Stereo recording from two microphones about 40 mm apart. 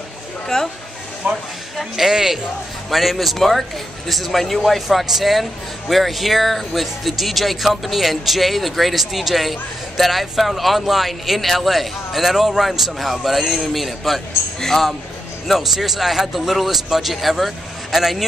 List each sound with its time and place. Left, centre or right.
0.5 s speech: centre
1.2 s speech: right
1.8 s a man's voice: centre